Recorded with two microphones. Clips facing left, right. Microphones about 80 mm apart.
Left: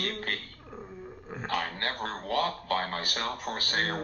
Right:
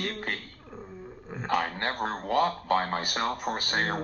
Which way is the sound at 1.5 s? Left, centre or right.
Centre.